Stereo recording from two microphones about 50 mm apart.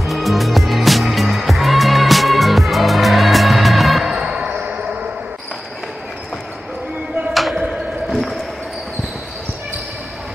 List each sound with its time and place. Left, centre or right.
0.0 s music: centre
4.1 s music: centre
7.5 s a sound: centre